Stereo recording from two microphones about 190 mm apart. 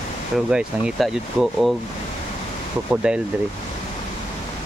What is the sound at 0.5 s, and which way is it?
Speech, 5° right (ahead or behind).